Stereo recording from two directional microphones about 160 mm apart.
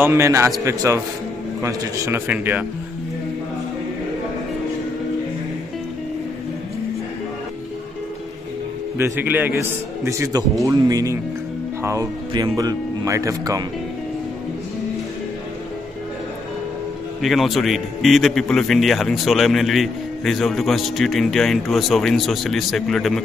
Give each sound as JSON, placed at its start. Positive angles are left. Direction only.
{"t": 0.0, "sound": "a man's voice", "side_deg": -15}
{"t": 8.9, "sound": "a man's voice", "side_deg": -15}
{"t": 17.2, "sound": "a man's voice", "side_deg": 0}